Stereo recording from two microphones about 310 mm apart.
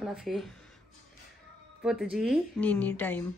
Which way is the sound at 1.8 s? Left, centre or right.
Centre.